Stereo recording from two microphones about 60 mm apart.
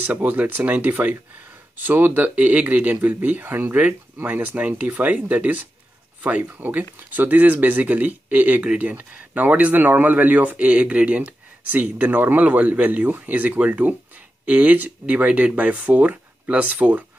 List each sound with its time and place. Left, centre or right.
0.0 s speech: right